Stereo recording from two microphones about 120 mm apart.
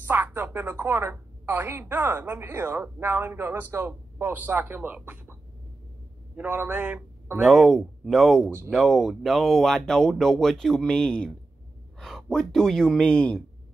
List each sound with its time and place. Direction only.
0.0 s a woman's voice: 15° right (ahead or behind)
7.3 s speech: 5° right (ahead or behind)
8.5 s a woman's voice: 15° right (ahead or behind)
8.7 s speech: centre (ahead or behind)